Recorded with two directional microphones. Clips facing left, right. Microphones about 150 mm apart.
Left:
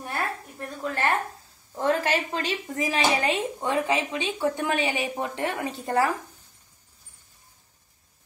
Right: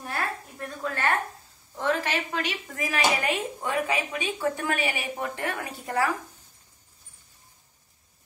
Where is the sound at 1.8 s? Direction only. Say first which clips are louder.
Left 3 dB; 40° left (ahead or behind).